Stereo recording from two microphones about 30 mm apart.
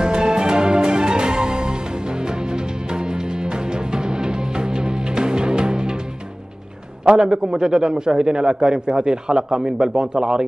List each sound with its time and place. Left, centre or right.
0.0 s music: right
7.1 s a man's voice: right